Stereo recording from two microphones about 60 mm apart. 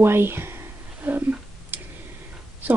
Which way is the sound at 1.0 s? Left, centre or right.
Right.